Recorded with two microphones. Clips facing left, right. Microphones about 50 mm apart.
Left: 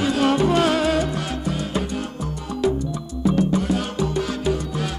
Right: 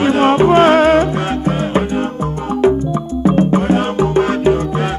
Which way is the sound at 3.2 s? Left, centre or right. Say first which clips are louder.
Right 7 dB; right.